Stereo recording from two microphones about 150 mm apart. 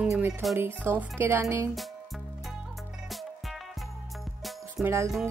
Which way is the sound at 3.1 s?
Centre (ahead or behind).